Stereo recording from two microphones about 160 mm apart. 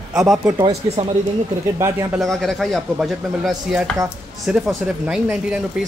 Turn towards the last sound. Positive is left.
turn(degrees=-5)  # may be behind; listen again after turning